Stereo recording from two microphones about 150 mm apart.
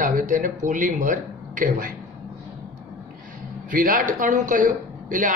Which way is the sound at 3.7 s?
65° right (ahead or behind).